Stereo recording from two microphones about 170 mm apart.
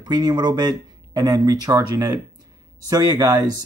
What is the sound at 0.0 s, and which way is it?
Speech, 25° right (ahead or behind).